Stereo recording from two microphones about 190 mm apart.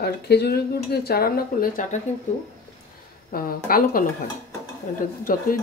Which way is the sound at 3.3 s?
50° left (ahead or behind).